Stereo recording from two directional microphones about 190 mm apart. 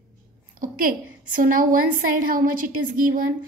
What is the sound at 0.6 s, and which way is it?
A woman's voice, 45° right (ahead or behind).